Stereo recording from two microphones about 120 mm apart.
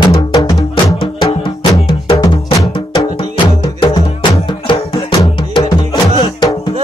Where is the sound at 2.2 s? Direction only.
30° left (ahead or behind).